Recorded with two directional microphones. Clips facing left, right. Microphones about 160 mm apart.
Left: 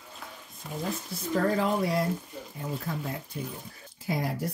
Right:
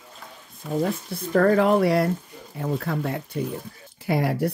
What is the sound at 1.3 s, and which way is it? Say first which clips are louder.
Speech: right 8 dB; 65° right (ahead or behind).